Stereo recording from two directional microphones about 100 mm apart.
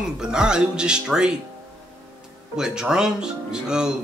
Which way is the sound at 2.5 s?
5° right (ahead or behind).